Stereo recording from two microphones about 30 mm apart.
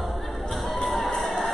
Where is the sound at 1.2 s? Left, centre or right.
Centre.